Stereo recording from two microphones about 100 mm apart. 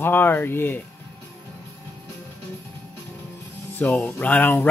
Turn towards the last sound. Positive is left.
turn(degrees=20)  # may be behind; listen again after turning